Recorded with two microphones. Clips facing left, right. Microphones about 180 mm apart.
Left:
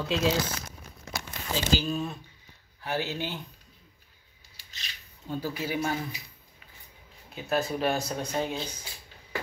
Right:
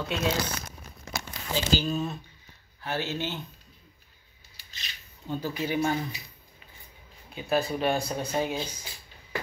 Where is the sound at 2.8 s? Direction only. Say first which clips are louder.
Even; 15° left (ahead or behind).